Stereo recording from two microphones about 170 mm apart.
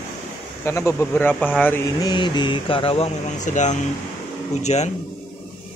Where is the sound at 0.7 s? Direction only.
15° left (ahead or behind).